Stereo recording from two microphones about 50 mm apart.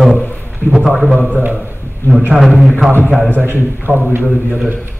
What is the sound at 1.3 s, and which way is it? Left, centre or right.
Speech, right.